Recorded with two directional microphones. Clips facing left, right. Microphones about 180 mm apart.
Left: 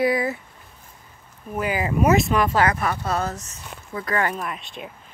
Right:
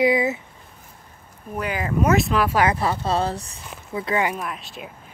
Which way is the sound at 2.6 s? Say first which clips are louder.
Right 2 dB; 25° right (ahead or behind).